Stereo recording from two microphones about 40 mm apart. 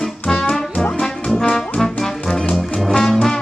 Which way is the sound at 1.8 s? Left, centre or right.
Centre.